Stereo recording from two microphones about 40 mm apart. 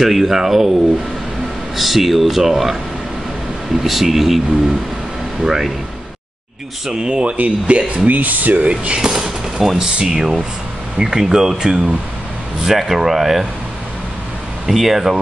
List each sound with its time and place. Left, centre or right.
0.0 s speech: centre
1.8 s speech: centre
5.4 s speech: centre
6.9 s speech: right
8.1 s speech: right
9.0 s a sound: centre
10.0 s speech: centre
12.6 s speech: centre
14.7 s speech: centre